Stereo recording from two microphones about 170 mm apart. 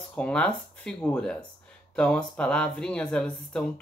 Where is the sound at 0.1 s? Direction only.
5° left (ahead or behind).